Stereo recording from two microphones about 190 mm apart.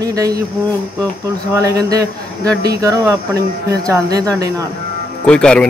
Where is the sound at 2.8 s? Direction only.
15° right (ahead or behind).